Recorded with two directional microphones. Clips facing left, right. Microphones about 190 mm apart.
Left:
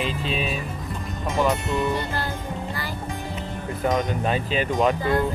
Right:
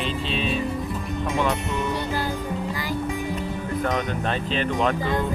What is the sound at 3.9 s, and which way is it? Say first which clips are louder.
Speech: left 2 dB; 5° left (ahead or behind).